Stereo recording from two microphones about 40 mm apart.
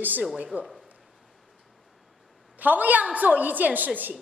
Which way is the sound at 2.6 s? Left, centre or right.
Right.